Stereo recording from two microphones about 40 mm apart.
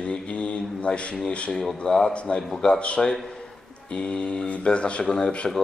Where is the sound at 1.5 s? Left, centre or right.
Centre.